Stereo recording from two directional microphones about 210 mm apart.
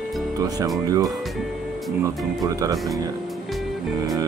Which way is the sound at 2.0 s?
15° right (ahead or behind).